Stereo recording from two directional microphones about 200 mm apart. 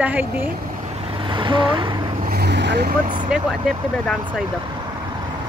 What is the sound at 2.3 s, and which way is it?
Vehicle, 60° right (ahead or behind).